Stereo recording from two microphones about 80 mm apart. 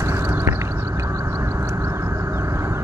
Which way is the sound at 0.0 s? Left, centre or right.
Right.